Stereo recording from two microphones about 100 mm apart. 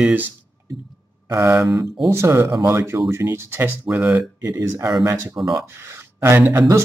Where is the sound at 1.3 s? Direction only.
30° right (ahead or behind).